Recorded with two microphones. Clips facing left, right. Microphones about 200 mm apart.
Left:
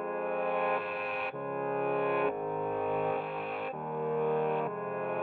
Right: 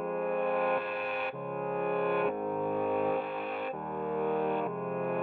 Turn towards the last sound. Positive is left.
turn(degrees=0)  # may be behind; listen again after turning